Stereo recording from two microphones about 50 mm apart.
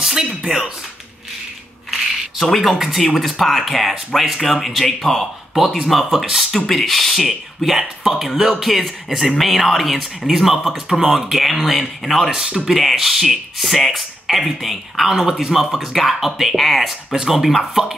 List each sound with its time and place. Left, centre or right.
0.0 s speech: centre
1.9 s a sound: centre
3.2 s speech: centre
12.7 s speech: centre